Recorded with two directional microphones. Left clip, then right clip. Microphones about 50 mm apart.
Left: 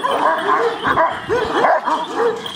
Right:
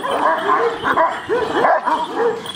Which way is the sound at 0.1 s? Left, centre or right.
Centre.